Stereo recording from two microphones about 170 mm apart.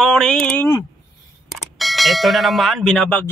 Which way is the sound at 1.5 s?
Centre (ahead or behind).